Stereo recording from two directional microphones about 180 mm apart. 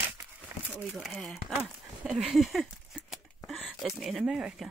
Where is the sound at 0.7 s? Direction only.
Centre (ahead or behind).